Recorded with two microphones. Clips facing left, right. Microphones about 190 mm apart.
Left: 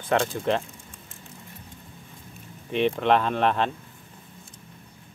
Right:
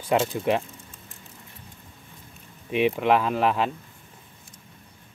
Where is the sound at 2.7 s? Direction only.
10° right (ahead or behind).